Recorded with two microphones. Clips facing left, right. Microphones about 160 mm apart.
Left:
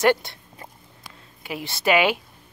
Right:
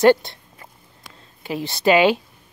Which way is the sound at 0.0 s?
35° right (ahead or behind).